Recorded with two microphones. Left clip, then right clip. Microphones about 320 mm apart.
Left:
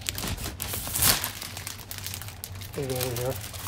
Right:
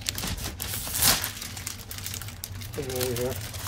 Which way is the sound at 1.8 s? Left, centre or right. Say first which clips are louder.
Right 1 dB; left.